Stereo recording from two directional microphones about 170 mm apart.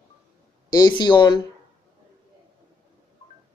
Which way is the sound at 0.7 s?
25° left (ahead or behind).